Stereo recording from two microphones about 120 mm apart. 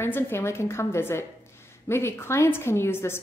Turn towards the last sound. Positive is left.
turn(degrees=20)  # may be behind; listen again after turning